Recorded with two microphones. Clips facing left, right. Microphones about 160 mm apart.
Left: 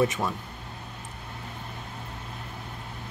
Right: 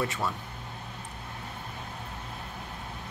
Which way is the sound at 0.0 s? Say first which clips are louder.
Left 5 dB; 20° left (ahead or behind).